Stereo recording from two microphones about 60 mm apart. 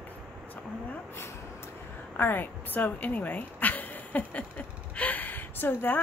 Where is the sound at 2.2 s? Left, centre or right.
Left.